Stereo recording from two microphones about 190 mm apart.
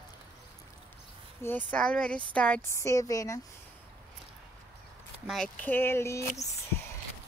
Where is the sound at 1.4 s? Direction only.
10° left (ahead or behind).